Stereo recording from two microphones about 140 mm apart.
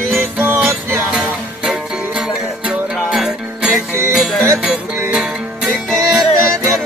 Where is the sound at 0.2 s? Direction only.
15° right (ahead or behind); by 6.7 s centre (ahead or behind).